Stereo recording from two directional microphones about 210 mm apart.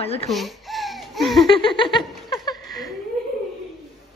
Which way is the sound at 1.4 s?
25° left (ahead or behind).